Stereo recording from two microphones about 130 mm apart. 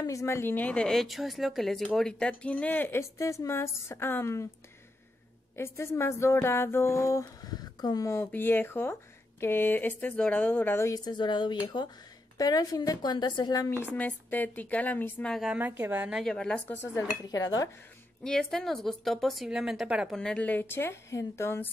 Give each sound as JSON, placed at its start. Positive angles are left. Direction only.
{"t": 0.0, "sound": "a woman's voice", "side_deg": 25}
{"t": 5.6, "sound": "a woman's voice", "side_deg": 20}
{"t": 11.1, "sound": "speech", "side_deg": 35}
{"t": 13.9, "sound": "a woman's voice", "side_deg": 15}
{"t": 15.3, "sound": "a woman's voice", "side_deg": -5}
{"t": 16.2, "sound": "speech", "side_deg": 5}
{"t": 16.8, "sound": "speech", "side_deg": 25}
{"t": 18.2, "sound": "speech", "side_deg": 5}
{"t": 20.2, "sound": "a woman's voice", "side_deg": 10}